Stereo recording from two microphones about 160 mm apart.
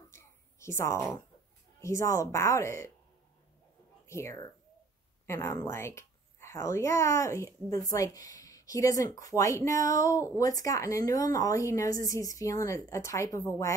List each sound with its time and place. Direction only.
0.1 s a sound: 15° left (ahead or behind)
1.8 s speech: 20° left (ahead or behind)
4.1 s speech: 15° left (ahead or behind)